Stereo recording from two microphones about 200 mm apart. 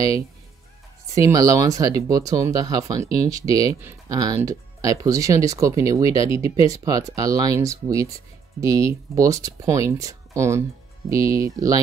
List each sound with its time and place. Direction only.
1.1 s speech: 15° right (ahead or behind)